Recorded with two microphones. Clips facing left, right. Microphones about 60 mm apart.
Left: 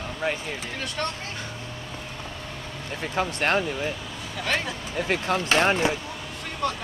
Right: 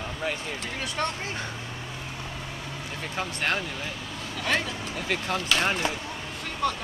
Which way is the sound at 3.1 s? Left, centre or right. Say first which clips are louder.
Left 5 dB; left.